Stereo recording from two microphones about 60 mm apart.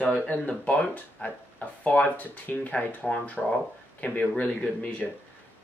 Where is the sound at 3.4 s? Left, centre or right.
Centre.